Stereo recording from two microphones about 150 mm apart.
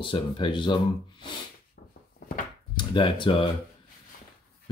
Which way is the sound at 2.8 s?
30° left (ahead or behind).